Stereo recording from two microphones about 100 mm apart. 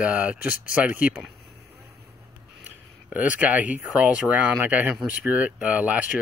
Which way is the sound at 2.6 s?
15° right (ahead or behind).